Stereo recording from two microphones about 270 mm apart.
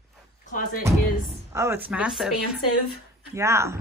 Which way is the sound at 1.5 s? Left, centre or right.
Centre.